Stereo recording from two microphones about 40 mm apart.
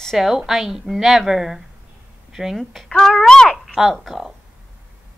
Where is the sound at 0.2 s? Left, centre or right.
Centre.